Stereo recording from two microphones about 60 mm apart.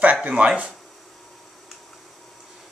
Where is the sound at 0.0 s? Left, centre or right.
Right.